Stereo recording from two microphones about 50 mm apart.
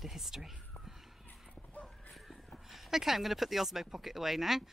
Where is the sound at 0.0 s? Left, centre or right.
Centre.